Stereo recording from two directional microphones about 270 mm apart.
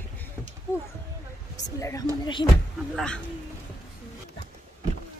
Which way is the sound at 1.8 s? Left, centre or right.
Centre.